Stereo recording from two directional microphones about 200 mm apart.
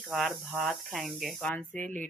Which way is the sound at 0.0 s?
Centre (ahead or behind).